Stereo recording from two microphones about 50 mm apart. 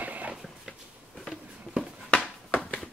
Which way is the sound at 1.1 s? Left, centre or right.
Centre.